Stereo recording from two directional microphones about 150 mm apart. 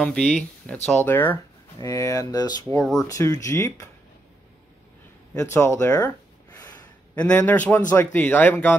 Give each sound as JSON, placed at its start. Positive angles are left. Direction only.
{"t": 0.0, "sound": "speech", "side_deg": 5}
{"t": 2.8, "sound": "speech", "side_deg": 0}
{"t": 3.1, "sound": "speech", "side_deg": 20}
{"t": 5.3, "sound": "speech", "side_deg": 20}
{"t": 7.2, "sound": "speech", "side_deg": 10}